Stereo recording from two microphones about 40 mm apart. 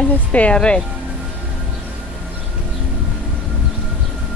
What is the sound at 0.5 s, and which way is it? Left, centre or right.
Speech, left.